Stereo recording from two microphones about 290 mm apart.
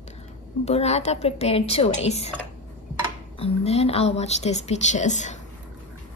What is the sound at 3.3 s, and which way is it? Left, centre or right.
A woman's voice, left.